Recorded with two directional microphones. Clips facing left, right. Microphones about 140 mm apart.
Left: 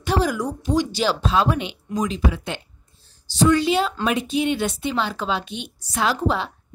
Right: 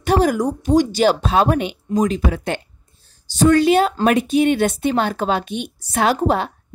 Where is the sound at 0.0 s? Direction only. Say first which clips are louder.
Right 5 dB; 55° right (ahead or behind).